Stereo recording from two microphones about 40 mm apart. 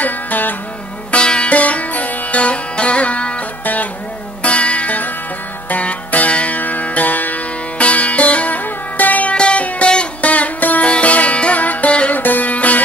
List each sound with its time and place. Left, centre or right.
0.0 s music: left
1.1 s sitar: left
1.5 s music: left
3.6 s music: left
4.4 s music: left
7.8 s sitar: left
9.3 s music: left